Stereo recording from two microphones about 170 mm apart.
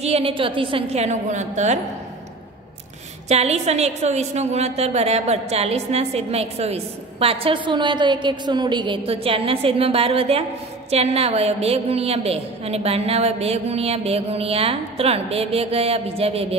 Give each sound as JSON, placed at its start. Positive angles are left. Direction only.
{"t": 0.0, "sound": "a woman's voice", "side_deg": -35}
{"t": 3.3, "sound": "a woman's voice", "side_deg": -40}